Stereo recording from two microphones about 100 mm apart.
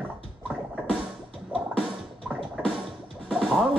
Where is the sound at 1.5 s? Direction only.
15° right (ahead or behind).